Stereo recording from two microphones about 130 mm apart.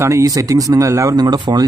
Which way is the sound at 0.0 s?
25° right (ahead or behind).